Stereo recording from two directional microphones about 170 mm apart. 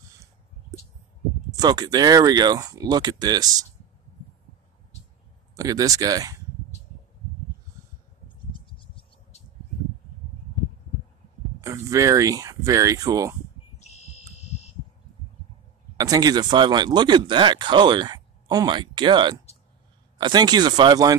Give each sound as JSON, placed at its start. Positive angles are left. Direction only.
{"t": 1.6, "sound": "speech", "side_deg": -25}
{"t": 5.6, "sound": "speech", "side_deg": -20}
{"t": 8.5, "sound": "a sound", "side_deg": 30}
{"t": 11.6, "sound": "speech", "side_deg": -20}
{"t": 13.7, "sound": "fire alarm", "side_deg": 40}
{"t": 16.0, "sound": "speech", "side_deg": -20}